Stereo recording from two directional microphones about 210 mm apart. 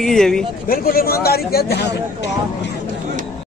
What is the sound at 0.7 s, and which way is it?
Speech, 45° left (ahead or behind).